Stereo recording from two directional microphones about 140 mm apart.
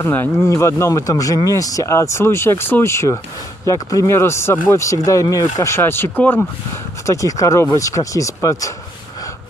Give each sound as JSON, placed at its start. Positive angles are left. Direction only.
{"t": 0.0, "sound": "speech", "side_deg": 15}